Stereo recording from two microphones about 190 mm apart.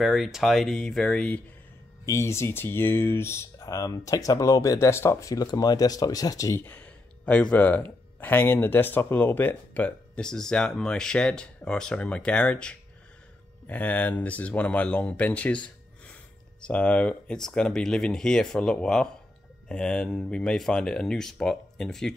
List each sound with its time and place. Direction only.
0.0 s speech: centre (ahead or behind)